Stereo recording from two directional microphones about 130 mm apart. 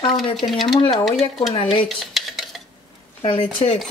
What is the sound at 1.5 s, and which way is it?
Speech, 40° left (ahead or behind).